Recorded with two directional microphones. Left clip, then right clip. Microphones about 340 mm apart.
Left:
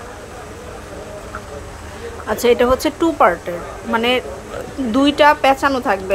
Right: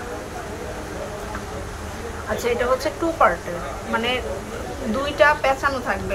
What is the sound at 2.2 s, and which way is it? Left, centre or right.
A woman's voice, left.